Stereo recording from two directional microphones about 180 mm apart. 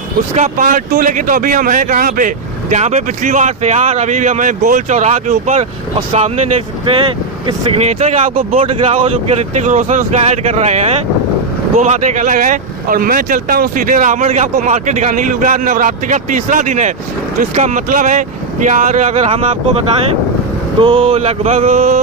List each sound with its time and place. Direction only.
0.4 s speech: 50° right (ahead or behind)
20.8 s speech: 30° right (ahead or behind)